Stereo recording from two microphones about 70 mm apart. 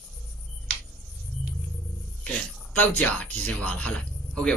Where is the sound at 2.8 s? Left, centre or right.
Left.